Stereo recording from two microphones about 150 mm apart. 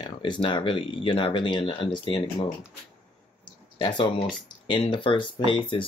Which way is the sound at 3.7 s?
35° left (ahead or behind).